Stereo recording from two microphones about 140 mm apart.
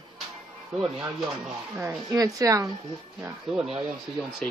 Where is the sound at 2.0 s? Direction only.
25° right (ahead or behind).